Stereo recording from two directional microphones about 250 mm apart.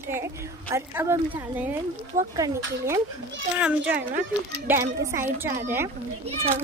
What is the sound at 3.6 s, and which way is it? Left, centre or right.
A child's voice, centre.